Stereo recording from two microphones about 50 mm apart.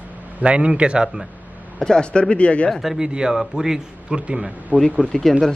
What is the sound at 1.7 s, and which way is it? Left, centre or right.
Speech, centre.